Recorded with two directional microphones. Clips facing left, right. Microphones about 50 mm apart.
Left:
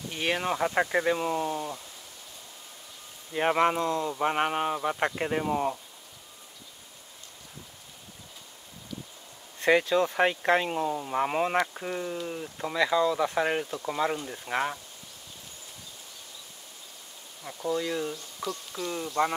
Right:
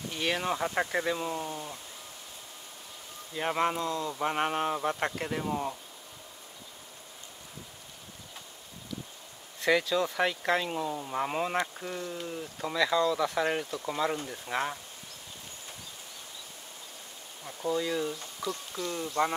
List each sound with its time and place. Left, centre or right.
0.1 s speech: centre
3.3 s speech: left
5.0 s speech: left
9.6 s speech: left
17.6 s speech: centre